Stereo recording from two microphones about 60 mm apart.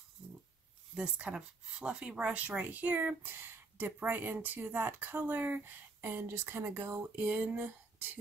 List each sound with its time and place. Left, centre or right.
0.9 s speech: centre
5.9 s speech: right